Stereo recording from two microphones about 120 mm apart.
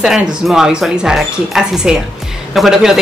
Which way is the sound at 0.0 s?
5° right (ahead or behind).